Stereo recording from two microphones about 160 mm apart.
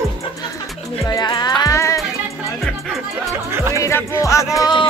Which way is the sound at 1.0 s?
25° left (ahead or behind).